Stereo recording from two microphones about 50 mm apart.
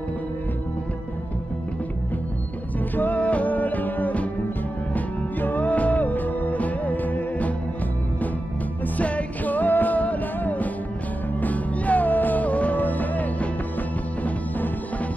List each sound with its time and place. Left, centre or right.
3.0 s music: left
8.9 s music: left